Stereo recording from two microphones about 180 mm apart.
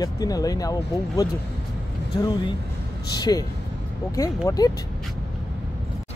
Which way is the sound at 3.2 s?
20° left (ahead or behind).